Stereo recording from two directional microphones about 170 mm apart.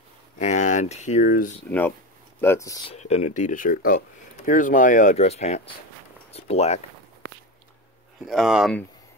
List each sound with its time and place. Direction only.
0.4 s speech: 45° left (ahead or behind)
1.7 s speech: 10° left (ahead or behind)
2.9 s speech: 40° left (ahead or behind)
8.3 s speech: centre (ahead or behind)